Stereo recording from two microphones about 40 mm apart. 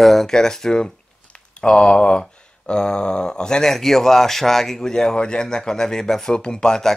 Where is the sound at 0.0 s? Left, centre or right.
Centre.